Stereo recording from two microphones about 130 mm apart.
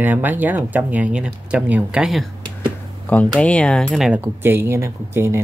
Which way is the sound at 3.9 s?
5° right (ahead or behind).